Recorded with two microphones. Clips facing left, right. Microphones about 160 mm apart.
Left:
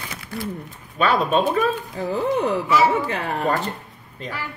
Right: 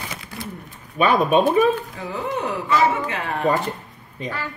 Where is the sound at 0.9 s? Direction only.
15° right (ahead or behind).